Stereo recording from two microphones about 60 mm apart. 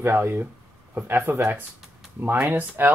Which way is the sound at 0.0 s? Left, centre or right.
Right.